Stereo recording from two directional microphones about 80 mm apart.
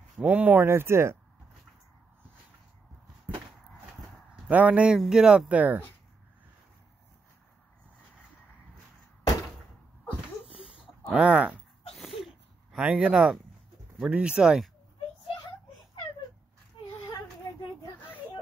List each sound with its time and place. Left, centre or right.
0.2 s speech: right
0.7 s speech: right
4.5 s speech: centre
10.5 s a sound: centre
11.9 s a sound: centre
12.7 s speech: centre